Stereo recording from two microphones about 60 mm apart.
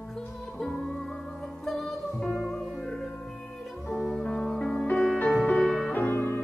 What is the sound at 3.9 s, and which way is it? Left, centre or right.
Music, centre.